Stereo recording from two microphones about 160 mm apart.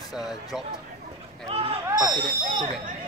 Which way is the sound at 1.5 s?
35° right (ahead or behind).